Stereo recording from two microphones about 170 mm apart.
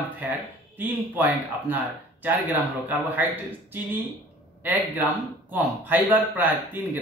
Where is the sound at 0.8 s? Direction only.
10° right (ahead or behind).